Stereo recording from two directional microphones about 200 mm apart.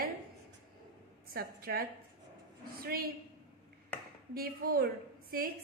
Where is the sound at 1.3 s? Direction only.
50° right (ahead or behind).